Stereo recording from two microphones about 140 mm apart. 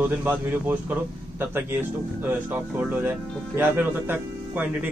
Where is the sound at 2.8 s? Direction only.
15° right (ahead or behind).